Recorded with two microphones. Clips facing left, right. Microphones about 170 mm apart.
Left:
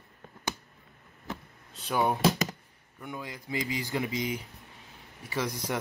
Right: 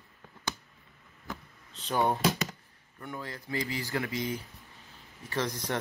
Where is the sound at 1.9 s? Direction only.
10° left (ahead or behind).